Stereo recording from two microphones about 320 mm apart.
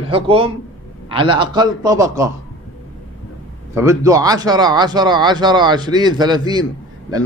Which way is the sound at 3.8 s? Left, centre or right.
Centre.